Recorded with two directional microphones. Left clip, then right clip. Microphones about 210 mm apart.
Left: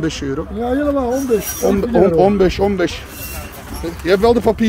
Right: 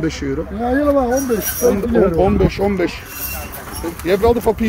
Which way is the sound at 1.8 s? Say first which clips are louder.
Left 2 dB; 40° left (ahead or behind).